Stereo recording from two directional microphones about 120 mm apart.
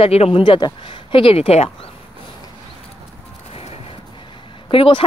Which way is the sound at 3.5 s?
60° left (ahead or behind).